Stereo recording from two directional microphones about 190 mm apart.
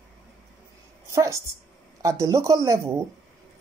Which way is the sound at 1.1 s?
15° right (ahead or behind).